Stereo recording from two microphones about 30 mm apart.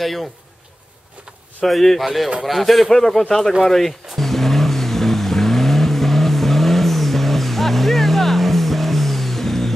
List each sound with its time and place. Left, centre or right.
0.0 s a man's voice: centre
1.7 s a man's voice: centre
2.0 s a man's voice: centre
3.2 s speech: centre
4.2 s vehicle: centre